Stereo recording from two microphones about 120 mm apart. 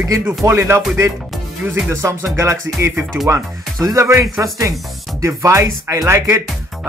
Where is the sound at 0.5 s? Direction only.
20° right (ahead or behind).